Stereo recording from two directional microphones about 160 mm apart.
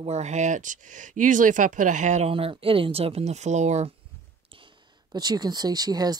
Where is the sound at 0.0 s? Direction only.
45° right (ahead or behind).